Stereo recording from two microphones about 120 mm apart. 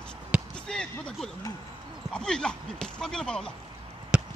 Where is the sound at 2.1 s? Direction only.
5° left (ahead or behind).